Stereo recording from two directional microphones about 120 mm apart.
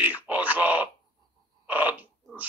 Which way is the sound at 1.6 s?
15° right (ahead or behind).